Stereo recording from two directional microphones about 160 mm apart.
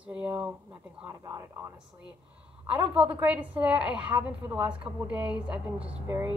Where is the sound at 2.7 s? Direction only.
10° right (ahead or behind).